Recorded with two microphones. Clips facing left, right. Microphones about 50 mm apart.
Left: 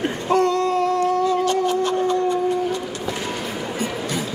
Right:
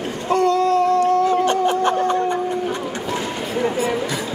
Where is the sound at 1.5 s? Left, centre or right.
Right.